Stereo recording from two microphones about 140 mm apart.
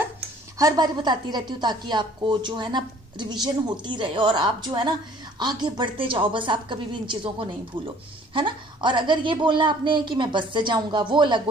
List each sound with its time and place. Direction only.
0.6 s a woman's voice: 25° right (ahead or behind)